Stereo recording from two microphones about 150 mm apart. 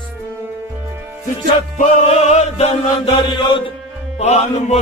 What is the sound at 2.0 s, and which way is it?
Chant, 45° left (ahead or behind).